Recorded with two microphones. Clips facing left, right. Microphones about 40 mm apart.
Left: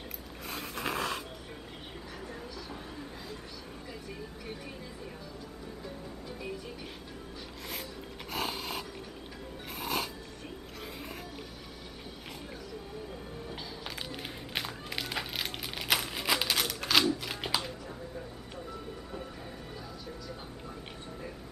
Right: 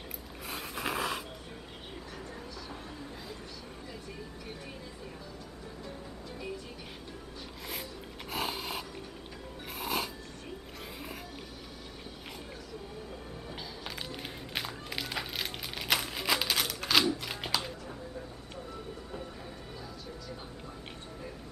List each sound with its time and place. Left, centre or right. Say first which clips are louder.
0.5 s scrape: even; centre
8.3 s dog: even; centre
9.7 s music: even; centre
13.5 s music: right 1 dB; centre
17.6 s a sound: even; centre